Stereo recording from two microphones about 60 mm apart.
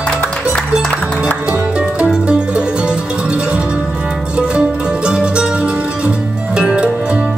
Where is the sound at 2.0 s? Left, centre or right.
Centre.